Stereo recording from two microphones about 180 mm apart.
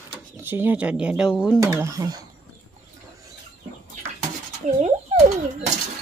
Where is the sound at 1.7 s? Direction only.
20° right (ahead or behind).